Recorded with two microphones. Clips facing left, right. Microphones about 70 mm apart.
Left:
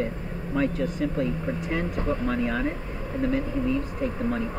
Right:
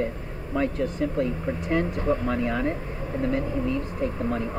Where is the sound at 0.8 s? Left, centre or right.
Right.